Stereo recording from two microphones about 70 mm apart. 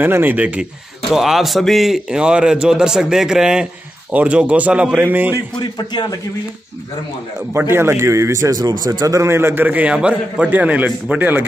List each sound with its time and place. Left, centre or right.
0.0 s a man's voice: right
1.1 s a man's voice: centre; by 5.3 s right
5.6 s a man's voice: left
7.5 s a man's voice: right
9.7 s a man's voice: centre